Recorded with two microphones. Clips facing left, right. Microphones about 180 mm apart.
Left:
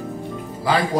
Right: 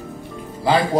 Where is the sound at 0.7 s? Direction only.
25° right (ahead or behind).